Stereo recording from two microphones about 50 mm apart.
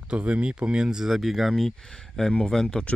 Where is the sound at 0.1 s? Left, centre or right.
Right; by 1.7 s centre.